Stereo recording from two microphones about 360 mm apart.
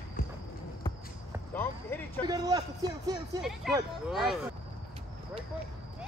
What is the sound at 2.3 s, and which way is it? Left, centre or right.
Speech, centre.